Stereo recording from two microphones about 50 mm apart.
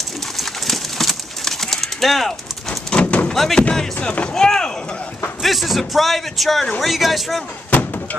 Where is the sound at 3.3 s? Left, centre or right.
Centre.